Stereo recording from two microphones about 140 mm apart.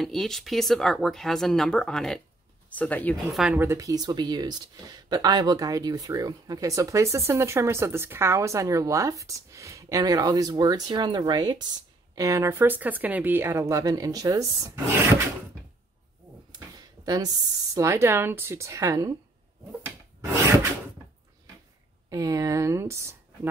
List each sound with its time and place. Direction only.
0.0 s speech: centre (ahead or behind)
3.5 s speech: 20° right (ahead or behind)
16.5 s a sound: 25° right (ahead or behind)
17.7 s speech: 20° right (ahead or behind)
22.1 s speech: 25° right (ahead or behind)